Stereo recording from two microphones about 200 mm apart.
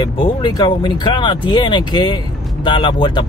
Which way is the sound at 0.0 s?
25° left (ahead or behind).